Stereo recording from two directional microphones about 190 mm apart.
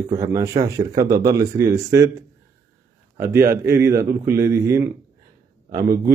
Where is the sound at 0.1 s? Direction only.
20° right (ahead or behind).